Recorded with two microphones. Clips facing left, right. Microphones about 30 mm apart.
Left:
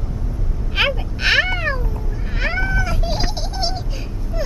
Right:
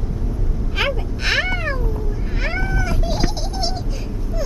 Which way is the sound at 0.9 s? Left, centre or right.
Centre.